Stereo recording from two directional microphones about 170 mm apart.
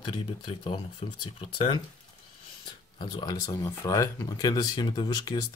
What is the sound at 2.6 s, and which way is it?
Speech, 25° left (ahead or behind).